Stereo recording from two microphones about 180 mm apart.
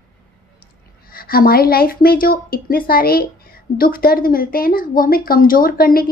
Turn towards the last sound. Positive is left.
turn(degrees=55)  # may be behind; listen again after turning